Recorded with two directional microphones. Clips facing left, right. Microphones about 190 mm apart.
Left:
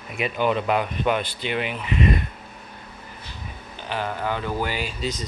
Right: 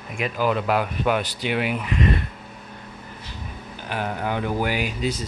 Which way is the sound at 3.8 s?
10° right (ahead or behind).